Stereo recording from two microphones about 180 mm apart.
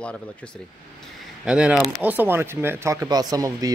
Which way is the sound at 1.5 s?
5° right (ahead or behind).